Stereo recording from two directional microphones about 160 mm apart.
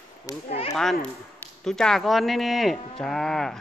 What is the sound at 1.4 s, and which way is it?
Speech, 5° left (ahead or behind).